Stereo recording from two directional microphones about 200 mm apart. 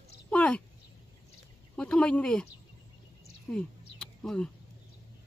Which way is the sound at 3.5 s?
5° left (ahead or behind).